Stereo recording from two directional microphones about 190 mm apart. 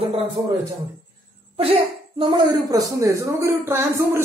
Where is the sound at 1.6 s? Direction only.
30° right (ahead or behind).